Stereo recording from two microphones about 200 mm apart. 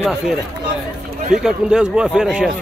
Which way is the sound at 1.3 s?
5° right (ahead or behind).